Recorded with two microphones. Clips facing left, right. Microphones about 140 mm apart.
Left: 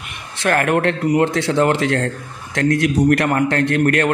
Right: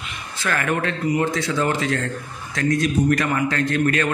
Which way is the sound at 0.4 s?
70° left (ahead or behind).